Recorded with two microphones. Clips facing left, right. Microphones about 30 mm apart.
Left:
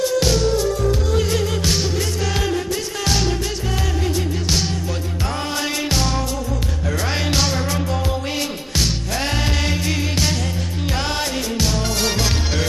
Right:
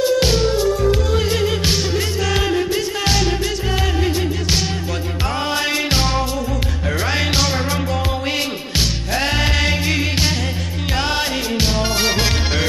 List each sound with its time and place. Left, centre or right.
0.0 s music: right
5.9 s music: right
8.7 s music: centre
11.5 s music: right